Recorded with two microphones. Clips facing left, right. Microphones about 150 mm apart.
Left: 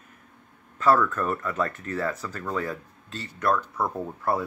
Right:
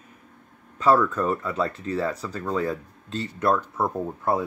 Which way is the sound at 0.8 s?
15° right (ahead or behind).